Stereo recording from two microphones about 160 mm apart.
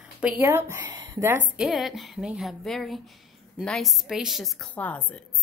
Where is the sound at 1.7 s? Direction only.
Centre (ahead or behind).